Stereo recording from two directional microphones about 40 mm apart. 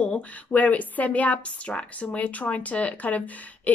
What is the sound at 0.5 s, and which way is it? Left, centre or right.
A woman's voice, left.